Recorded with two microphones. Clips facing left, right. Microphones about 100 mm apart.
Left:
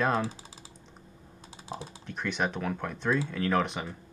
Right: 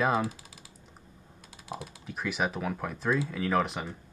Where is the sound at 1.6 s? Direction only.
30° left (ahead or behind).